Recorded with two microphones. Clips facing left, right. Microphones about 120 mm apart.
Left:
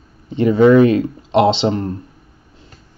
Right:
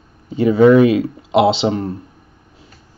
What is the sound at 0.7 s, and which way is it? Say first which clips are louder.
Speech: even; 30° left (ahead or behind).